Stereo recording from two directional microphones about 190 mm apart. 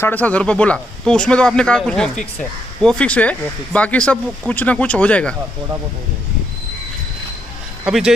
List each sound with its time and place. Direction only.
0.0 s speech: 10° left (ahead or behind)
7.8 s speech: 5° right (ahead or behind)